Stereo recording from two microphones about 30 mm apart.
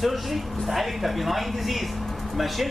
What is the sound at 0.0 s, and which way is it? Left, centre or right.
Speech, centre.